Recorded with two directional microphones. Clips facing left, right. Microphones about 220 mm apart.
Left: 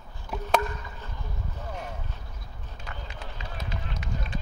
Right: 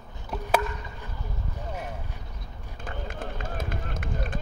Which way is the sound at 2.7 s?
50° right (ahead or behind).